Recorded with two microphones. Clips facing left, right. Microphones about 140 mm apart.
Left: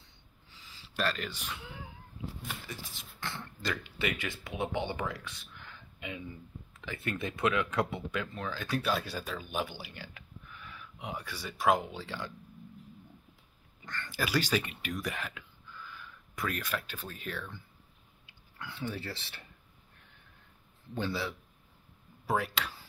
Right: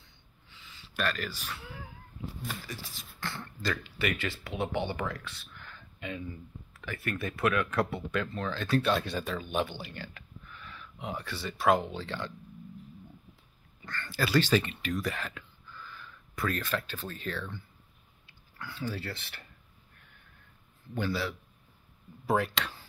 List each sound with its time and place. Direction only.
0.5 s gasp: 35° left (ahead or behind); by 1.9 s 20° left (ahead or behind)
2.4 s speech: 20° left (ahead or behind)
13.8 s speech: 15° left (ahead or behind)
20.9 s a man's voice: 25° left (ahead or behind)
22.2 s speech: 5° left (ahead or behind)